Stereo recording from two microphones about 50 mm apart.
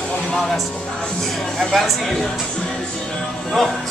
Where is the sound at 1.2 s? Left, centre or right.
Centre.